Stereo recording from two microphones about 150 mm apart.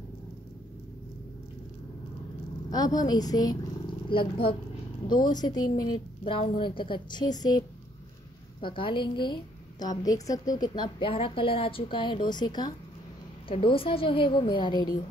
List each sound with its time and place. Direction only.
2.7 s a woman's voice: 25° left (ahead or behind)
6.2 s a woman's voice: 35° left (ahead or behind)